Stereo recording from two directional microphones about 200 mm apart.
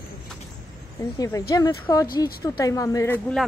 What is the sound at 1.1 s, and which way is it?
A woman's voice, 15° left (ahead or behind).